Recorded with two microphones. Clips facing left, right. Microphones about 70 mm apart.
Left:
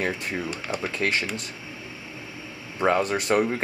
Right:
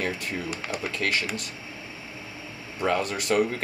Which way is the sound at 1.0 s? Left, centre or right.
Left.